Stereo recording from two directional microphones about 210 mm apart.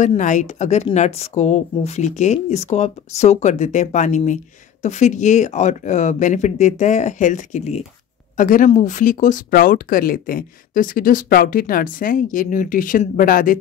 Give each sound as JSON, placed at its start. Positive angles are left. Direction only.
{"t": 0.0, "sound": "speech", "side_deg": 35}